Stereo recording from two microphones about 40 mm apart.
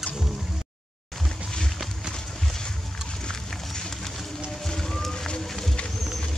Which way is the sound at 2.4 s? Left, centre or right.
Centre.